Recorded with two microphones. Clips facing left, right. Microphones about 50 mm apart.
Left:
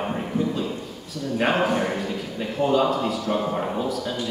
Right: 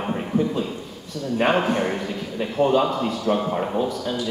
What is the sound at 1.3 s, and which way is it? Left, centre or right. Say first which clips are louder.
Speech: right 2 dB; centre.